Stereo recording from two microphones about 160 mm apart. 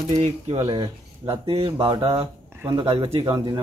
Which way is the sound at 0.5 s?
25° right (ahead or behind).